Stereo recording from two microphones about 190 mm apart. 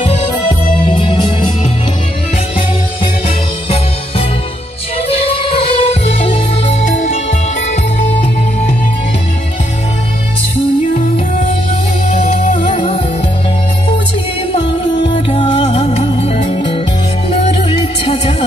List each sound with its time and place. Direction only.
0.8 s music: 25° left (ahead or behind)
5.1 s music: 30° left (ahead or behind)
12.4 s music: 35° left (ahead or behind)
14.5 s music: 30° left (ahead or behind)